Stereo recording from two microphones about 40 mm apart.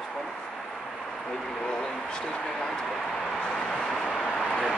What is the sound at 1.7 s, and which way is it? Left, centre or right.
Speech, centre.